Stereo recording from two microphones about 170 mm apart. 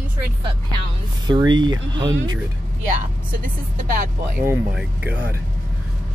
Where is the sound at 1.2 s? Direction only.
25° right (ahead or behind).